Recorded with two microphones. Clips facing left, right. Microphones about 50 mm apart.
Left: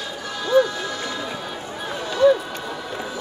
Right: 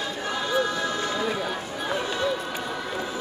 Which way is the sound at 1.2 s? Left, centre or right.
Centre.